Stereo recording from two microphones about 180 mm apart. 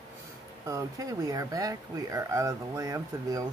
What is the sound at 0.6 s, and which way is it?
Speech, 20° right (ahead or behind).